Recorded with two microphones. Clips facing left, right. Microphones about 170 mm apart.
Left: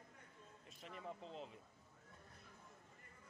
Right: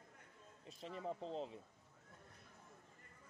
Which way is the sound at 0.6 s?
30° right (ahead or behind).